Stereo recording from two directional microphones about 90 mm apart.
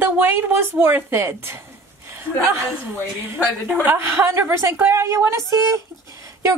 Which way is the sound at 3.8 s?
25° right (ahead or behind).